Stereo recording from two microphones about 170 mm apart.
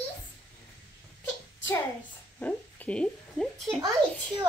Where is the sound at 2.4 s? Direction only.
10° left (ahead or behind).